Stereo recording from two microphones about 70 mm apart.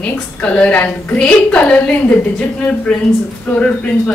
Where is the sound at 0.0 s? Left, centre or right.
Centre.